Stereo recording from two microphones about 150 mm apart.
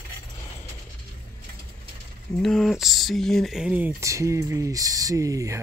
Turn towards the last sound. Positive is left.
turn(degrees=-20)  # may be behind; listen again after turning